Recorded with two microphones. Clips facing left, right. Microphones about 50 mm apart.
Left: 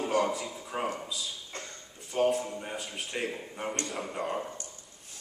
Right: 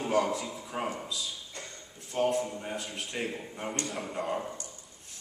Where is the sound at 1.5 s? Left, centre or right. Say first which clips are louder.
Left 2 dB; left.